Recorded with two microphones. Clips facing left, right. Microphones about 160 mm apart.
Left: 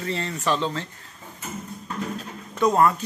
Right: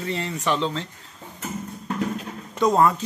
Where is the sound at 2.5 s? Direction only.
20° right (ahead or behind).